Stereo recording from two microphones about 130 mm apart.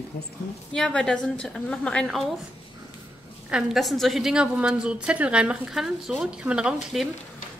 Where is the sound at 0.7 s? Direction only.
5° left (ahead or behind).